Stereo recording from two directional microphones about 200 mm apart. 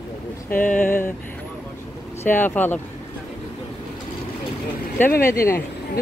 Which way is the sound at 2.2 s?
10° left (ahead or behind).